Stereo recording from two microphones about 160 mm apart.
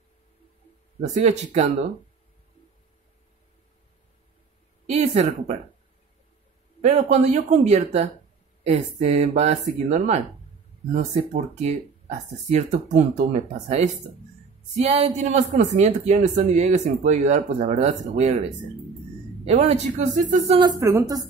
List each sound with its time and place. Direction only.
1.0 s speech: 45° right (ahead or behind)
4.8 s speech: 45° right (ahead or behind)
6.8 s speech: 50° right (ahead or behind)
11.6 s speech: 45° right (ahead or behind)
19.4 s speech: 45° right (ahead or behind)
20.8 s speech: 20° right (ahead or behind)